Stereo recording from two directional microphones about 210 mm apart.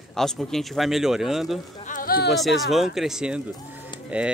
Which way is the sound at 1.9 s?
45° left (ahead or behind).